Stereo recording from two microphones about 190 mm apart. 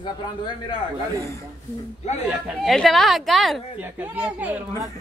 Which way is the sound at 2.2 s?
Centre (ahead or behind).